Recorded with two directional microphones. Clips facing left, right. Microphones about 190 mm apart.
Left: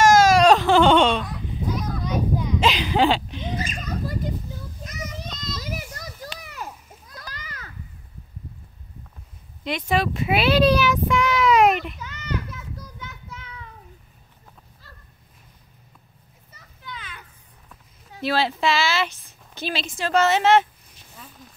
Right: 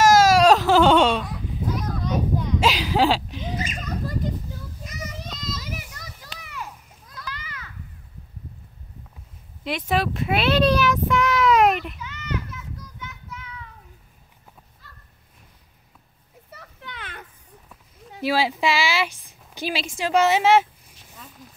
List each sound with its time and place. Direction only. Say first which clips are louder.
0.0 s baby cry: even; 5° right (ahead or behind)
4.8 s child singing: left 1 dB; 5° right (ahead or behind)
5.6 s children playing: left 3 dB; 40° left (ahead or behind)
9.7 s child singing: left 1 dB; centre (ahead or behind)
12.0 s children playing: left 1 dB; 40° left (ahead or behind)
16.4 s children playing: even; 65° right (ahead or behind)
18.2 s speech: even; 10° right (ahead or behind)